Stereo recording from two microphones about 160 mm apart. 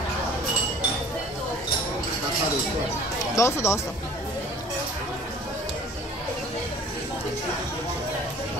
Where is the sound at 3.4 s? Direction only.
15° left (ahead or behind).